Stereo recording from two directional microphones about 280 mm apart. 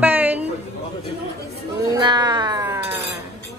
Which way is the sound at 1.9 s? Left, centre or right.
Centre.